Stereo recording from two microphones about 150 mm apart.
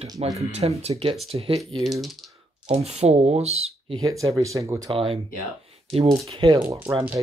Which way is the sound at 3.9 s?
25° right (ahead or behind).